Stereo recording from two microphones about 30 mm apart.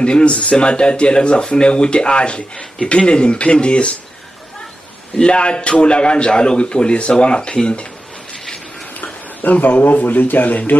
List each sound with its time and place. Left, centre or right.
0.0 s speech: left
5.2 s speech: left
9.0 s speech: left